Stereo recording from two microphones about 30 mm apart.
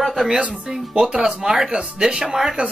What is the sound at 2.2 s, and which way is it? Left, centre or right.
Speech, centre.